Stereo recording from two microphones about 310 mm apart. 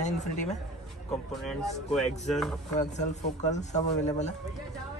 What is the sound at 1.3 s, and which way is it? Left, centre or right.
Speech, centre.